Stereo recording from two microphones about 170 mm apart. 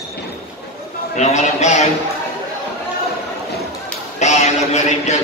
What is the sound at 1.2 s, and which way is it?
Speech, 40° left (ahead or behind).